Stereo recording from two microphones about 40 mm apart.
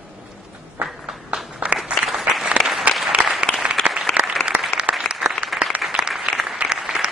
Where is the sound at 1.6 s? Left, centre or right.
Right.